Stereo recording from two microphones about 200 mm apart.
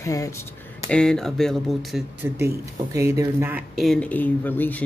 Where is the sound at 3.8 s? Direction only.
5° left (ahead or behind).